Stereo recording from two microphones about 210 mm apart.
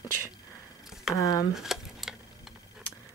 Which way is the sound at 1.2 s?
15° left (ahead or behind).